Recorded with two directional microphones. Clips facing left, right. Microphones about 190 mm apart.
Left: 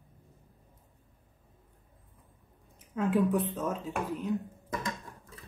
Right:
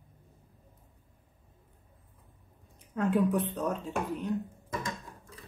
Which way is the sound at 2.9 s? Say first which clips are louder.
Even; centre (ahead or behind).